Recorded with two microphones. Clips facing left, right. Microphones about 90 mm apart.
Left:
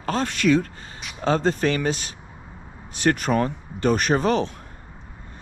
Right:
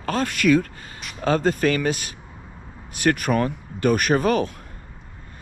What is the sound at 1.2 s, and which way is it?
Speech, 25° left (ahead or behind).